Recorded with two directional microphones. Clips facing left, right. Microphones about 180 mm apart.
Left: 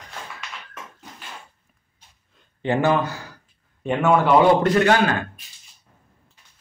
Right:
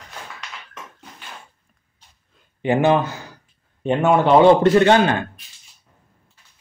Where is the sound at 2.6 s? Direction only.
15° right (ahead or behind).